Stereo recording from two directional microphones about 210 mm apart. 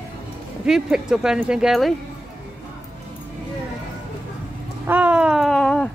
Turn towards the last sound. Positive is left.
turn(degrees=5)  # may be behind; listen again after turning